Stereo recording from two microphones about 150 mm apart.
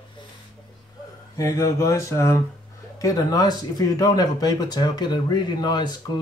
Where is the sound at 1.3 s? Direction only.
20° left (ahead or behind).